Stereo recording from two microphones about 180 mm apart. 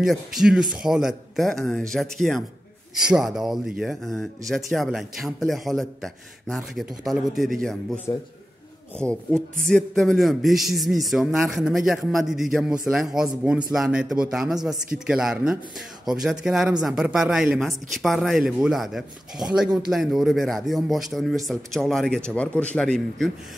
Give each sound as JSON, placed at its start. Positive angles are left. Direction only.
{"t": 0.0, "sound": "speech", "side_deg": 0}
{"t": 8.1, "sound": "a man's voice", "side_deg": 20}
{"t": 8.9, "sound": "speech", "side_deg": 5}